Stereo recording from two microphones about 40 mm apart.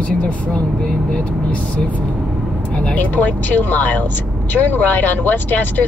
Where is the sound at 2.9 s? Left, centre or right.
Left.